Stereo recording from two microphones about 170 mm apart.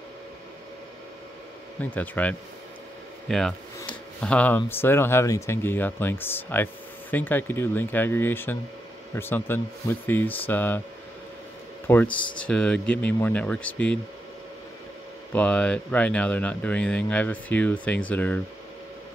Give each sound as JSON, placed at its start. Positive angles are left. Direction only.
{"t": 1.8, "sound": "speech", "side_deg": 10}
{"t": 11.9, "sound": "speech", "side_deg": 10}
{"t": 15.3, "sound": "speech", "side_deg": 10}